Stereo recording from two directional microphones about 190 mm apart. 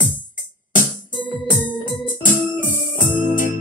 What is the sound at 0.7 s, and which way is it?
Music, 45° left (ahead or behind).